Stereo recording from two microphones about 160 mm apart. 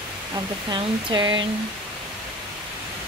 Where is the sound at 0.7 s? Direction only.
25° right (ahead or behind).